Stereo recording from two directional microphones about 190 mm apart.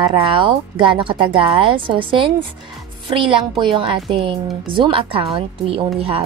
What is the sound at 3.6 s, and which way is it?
A woman's voice, 25° right (ahead or behind).